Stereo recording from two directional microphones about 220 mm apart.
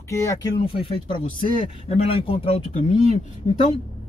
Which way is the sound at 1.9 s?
25° left (ahead or behind).